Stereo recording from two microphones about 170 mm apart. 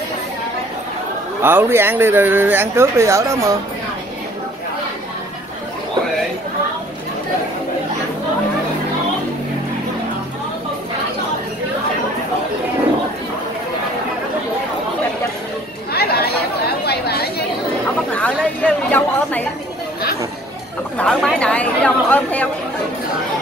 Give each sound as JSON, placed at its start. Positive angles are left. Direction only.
{"t": 1.4, "sound": "speech", "side_deg": -15}
{"t": 15.9, "sound": "chatter", "side_deg": 70}
{"t": 18.1, "sound": "a woman's voice", "side_deg": 10}
{"t": 21.0, "sound": "a woman's voice", "side_deg": 5}